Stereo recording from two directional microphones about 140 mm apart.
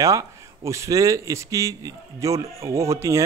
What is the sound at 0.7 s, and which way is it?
A man's voice, 20° right (ahead or behind).